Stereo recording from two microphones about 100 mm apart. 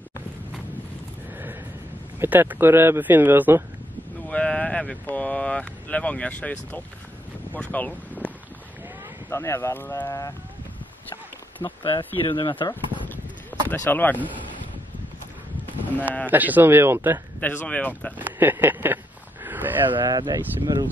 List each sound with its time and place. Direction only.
2.1 s speech: 20° right (ahead or behind)
4.3 s speech: 10° left (ahead or behind)
9.3 s speech: 30° left (ahead or behind)
11.6 s speech: 60° left (ahead or behind)
13.7 s speech: 20° left (ahead or behind)
16.3 s speech: 15° right (ahead or behind)
17.4 s speech: 20° left (ahead or behind)
18.2 s speech: 20° right (ahead or behind)
19.4 s a sound: 20° right (ahead or behind)
20.1 s speech: 45° right (ahead or behind)